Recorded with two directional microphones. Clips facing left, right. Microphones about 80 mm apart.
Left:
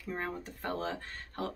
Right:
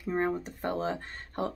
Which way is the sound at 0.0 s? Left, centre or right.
Right.